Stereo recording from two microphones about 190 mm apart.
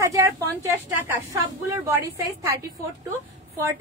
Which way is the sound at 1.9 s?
15° right (ahead or behind).